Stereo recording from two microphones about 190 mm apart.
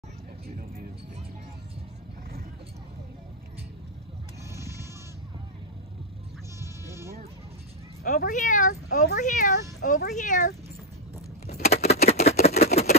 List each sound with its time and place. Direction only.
4.5 s sheep: 15° right (ahead or behind)
6.6 s bleat: 15° right (ahead or behind)
8.0 s speech: 45° left (ahead or behind)
11.4 s a sound: 35° left (ahead or behind)